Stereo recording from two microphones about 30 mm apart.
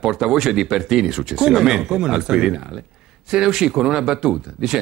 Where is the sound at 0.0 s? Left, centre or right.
Centre.